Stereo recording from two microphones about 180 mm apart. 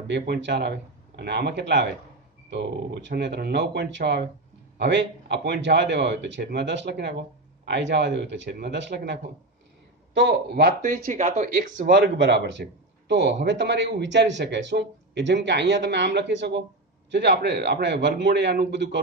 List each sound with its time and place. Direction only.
0.1 s speech: 75° right (ahead or behind)
10.8 s speech: 45° right (ahead or behind)
11.9 s speech: 75° right (ahead or behind)